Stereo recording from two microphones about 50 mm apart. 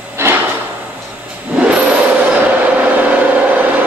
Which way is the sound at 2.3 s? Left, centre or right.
Right.